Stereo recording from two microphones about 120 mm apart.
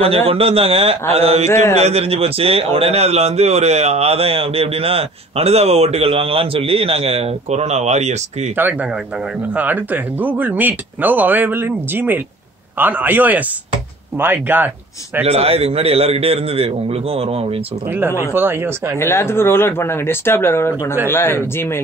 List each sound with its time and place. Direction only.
0.3 s a man's voice: 55° right (ahead or behind)
1.5 s speech: 20° left (ahead or behind)
1.8 s a man's voice: 60° right (ahead or behind)
9.5 s speech: 15° right (ahead or behind)
15.2 s a man's voice: 55° right (ahead or behind)
17.9 s speech: 15° right (ahead or behind)
18.9 s speech: 20° left (ahead or behind)